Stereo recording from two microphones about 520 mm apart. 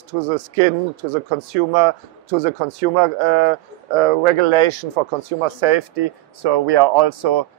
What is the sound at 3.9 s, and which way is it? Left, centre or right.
Speech, right.